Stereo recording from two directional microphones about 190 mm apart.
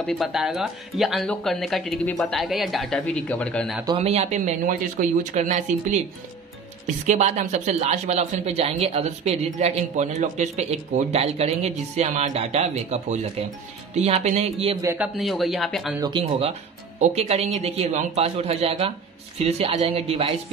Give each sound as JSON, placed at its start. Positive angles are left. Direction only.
{"t": 0.0, "sound": "speech", "side_deg": 0}
{"t": 3.8, "sound": "speech", "side_deg": -30}
{"t": 7.1, "sound": "speech", "side_deg": -35}
{"t": 14.8, "sound": "speech", "side_deg": -15}
{"t": 15.1, "sound": "speech", "side_deg": 0}
{"t": 16.0, "sound": "speech", "side_deg": -25}